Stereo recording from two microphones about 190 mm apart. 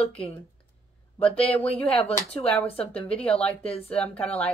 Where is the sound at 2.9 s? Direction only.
5° left (ahead or behind).